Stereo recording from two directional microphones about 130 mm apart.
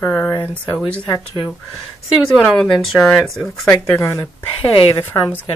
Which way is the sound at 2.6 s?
Centre (ahead or behind).